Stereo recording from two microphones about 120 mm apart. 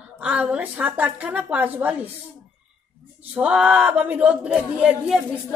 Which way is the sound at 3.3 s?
10° right (ahead or behind).